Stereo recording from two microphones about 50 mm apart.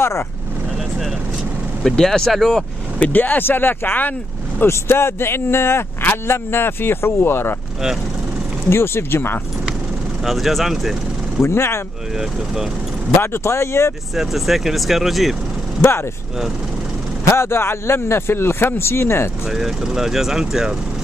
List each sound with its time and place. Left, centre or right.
0.0 s speech: left
1.9 s speech: centre
3.0 s speech: left
4.6 s speech: left
8.6 s speech: left
10.2 s speech: centre
11.4 s speech: left
13.2 s speech: left
14.1 s speech: centre
15.8 s speech: left
17.3 s speech: left
19.5 s speech: centre